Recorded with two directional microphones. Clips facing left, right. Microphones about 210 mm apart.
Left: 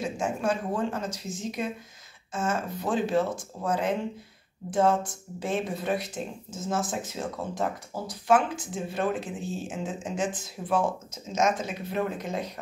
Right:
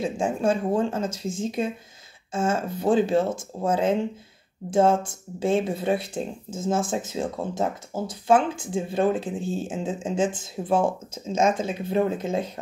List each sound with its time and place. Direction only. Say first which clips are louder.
0.0 s speech: right 5 dB; 30° right (ahead or behind)